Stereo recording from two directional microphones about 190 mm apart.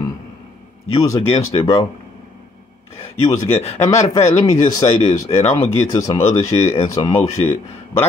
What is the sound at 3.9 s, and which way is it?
Speech, 15° left (ahead or behind).